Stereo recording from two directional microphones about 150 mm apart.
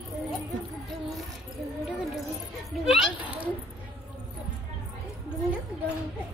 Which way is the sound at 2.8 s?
5° right (ahead or behind).